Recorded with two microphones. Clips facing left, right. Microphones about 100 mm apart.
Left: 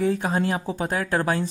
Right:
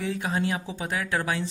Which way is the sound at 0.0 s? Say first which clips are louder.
Left 5 dB; 40° left (ahead or behind).